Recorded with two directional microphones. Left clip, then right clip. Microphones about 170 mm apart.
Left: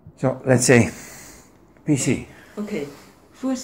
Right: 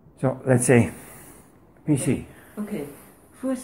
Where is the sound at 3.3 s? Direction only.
20° left (ahead or behind).